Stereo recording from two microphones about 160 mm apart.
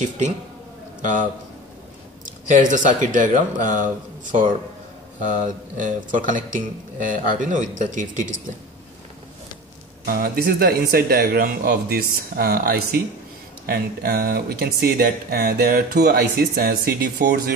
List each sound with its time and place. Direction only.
2.2 s speech: 55° right (ahead or behind)
10.0 s speech: 65° right (ahead or behind); by 17.4 s 85° right